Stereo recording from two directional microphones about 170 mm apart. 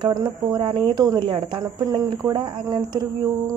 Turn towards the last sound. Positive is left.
turn(degrees=-25)  # may be behind; listen again after turning